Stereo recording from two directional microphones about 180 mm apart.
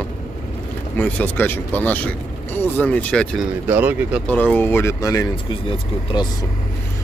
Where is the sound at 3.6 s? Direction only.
10° right (ahead or behind).